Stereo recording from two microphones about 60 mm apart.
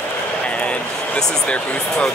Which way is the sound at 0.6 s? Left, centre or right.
Centre.